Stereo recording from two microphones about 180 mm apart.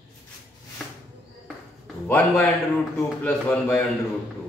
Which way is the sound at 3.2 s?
10° left (ahead or behind).